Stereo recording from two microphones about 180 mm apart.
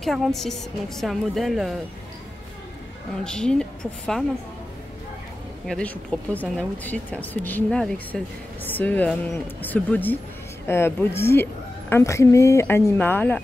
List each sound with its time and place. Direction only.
0.0 s a woman's voice: centre (ahead or behind)
3.3 s a woman's voice: 5° left (ahead or behind)
5.7 s a woman's voice: 5° left (ahead or behind)